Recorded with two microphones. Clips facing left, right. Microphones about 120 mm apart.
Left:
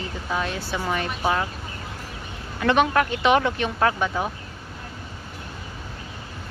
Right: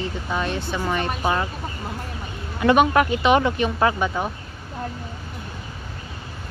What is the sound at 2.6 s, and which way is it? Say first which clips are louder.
Speech: right 3 dB; 10° right (ahead or behind).